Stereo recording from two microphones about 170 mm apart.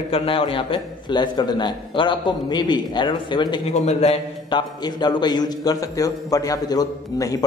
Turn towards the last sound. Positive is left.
turn(degrees=20)  # may be behind; listen again after turning